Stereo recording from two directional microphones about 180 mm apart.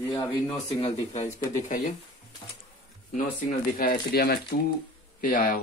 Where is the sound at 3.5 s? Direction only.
55° left (ahead or behind).